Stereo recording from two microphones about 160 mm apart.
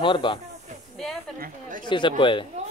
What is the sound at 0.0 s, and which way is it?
Speech, 30° left (ahead or behind).